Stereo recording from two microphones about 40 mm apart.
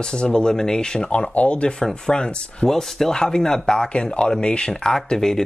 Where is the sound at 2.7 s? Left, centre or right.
Centre; by 4.7 s left.